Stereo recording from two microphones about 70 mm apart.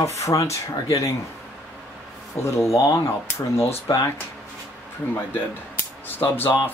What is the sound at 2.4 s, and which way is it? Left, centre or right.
Speech, left.